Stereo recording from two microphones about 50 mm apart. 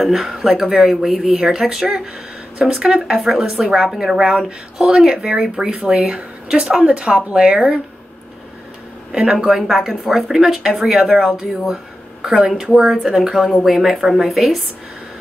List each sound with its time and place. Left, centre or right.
0.0 s a woman's voice: centre
9.1 s a woman's voice: centre
9.5 s a woman's voice: centre